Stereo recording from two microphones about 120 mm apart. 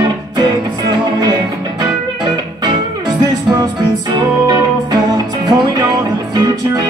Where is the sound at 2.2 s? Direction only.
35° right (ahead or behind).